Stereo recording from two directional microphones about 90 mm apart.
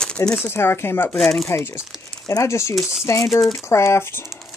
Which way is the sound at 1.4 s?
30° left (ahead or behind).